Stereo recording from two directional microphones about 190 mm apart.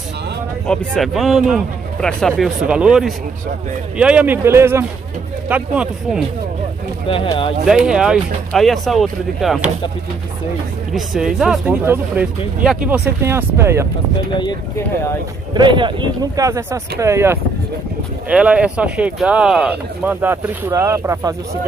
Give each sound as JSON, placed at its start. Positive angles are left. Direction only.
{"t": 0.7, "sound": "speech", "side_deg": 0}
{"t": 7.1, "sound": "speech", "side_deg": 25}
{"t": 7.6, "sound": "speech", "side_deg": -5}
{"t": 10.9, "sound": "speech", "side_deg": 0}
{"t": 14.3, "sound": "speech", "side_deg": 25}
{"t": 15.5, "sound": "speech", "side_deg": -25}